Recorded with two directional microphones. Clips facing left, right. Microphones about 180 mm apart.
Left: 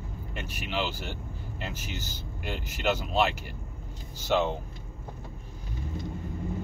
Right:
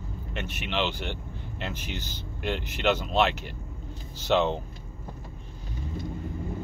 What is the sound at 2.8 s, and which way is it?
Speech, 10° left (ahead or behind).